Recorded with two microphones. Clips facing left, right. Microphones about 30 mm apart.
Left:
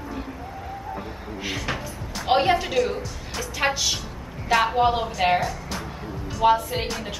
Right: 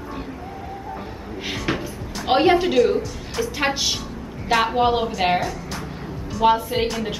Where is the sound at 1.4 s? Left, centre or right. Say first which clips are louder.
Right 3 dB; centre.